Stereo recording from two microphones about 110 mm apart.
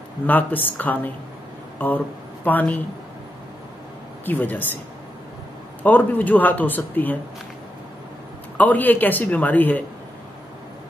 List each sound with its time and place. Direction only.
0.3 s speech: 15° left (ahead or behind)
4.3 s speech: 15° left (ahead or behind)
5.8 s speech: 15° left (ahead or behind)
8.5 s speech: 15° left (ahead or behind)